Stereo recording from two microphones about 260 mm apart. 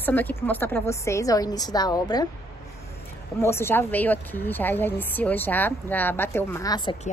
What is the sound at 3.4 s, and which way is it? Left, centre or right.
A woman's voice, centre.